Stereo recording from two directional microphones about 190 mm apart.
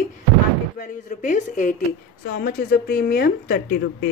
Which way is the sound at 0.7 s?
40° left (ahead or behind).